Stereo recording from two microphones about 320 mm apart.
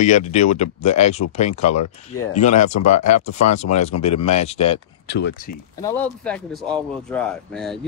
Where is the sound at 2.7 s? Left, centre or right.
Left.